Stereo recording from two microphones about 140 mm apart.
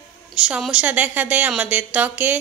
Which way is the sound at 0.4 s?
5° right (ahead or behind).